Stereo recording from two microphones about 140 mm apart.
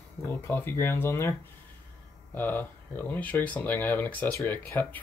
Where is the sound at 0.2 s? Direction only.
15° left (ahead or behind).